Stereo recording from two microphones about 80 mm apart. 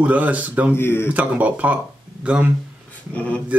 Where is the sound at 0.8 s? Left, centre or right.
Left.